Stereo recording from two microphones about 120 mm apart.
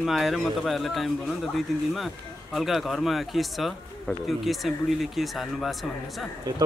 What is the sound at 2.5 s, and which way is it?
Speech, centre (ahead or behind).